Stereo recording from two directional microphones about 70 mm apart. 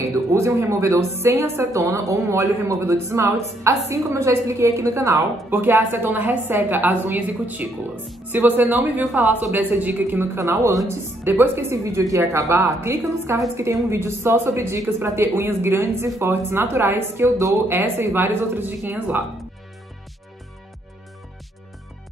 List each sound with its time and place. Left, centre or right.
0.0 s speech: right
5.5 s a woman's voice: right
10.3 s speech: right
11.2 s speech: right
11.7 s a woman's voice: right